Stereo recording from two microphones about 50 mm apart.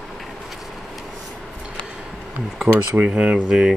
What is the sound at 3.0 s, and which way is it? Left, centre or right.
Speech, right.